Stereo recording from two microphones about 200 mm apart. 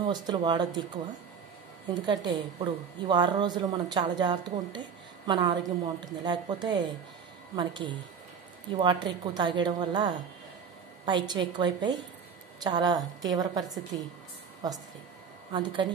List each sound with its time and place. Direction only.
0.0 s a woman's voice: 20° right (ahead or behind)
2.0 s a woman's voice: 25° right (ahead or behind)
15.5 s a woman's voice: 25° right (ahead or behind)